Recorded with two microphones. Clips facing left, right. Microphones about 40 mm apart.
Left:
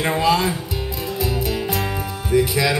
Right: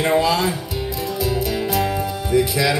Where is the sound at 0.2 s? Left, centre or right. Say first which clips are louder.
Left 1 dB; centre.